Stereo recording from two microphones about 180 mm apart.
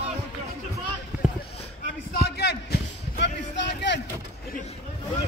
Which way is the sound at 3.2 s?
75° left (ahead or behind).